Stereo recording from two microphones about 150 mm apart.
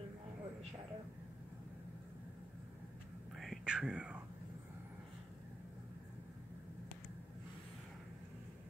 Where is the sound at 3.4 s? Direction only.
Centre (ahead or behind).